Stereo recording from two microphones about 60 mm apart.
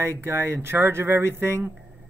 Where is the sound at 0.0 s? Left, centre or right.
Right.